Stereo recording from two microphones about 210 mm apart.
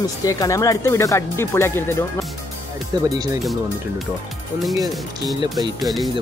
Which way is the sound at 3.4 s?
Centre (ahead or behind).